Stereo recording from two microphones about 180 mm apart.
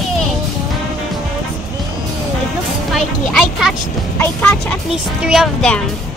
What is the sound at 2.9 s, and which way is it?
Music, centre (ahead or behind).